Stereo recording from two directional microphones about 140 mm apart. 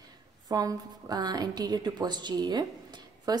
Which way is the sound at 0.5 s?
25° right (ahead or behind).